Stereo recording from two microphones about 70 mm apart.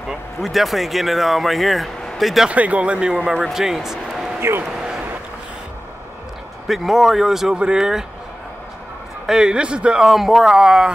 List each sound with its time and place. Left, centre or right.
0.1 s speech: centre
2.5 s a man's voice: centre
4.4 s speech: right
4.6 s a sound: centre
6.7 s speech: centre
9.2 s a man's voice: centre
10.0 s a man's voice: centre